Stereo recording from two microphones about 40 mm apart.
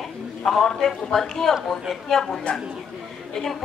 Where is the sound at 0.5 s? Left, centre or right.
Centre.